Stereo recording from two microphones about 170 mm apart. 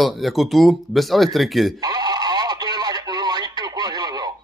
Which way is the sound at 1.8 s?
25° right (ahead or behind).